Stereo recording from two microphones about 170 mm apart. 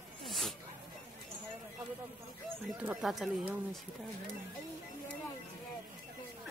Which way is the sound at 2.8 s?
5° right (ahead or behind).